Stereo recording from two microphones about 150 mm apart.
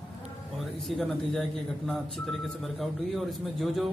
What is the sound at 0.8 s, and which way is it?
Speech, centre (ahead or behind).